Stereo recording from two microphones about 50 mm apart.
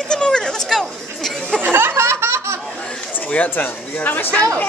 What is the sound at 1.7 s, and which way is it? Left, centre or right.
Laughter, right.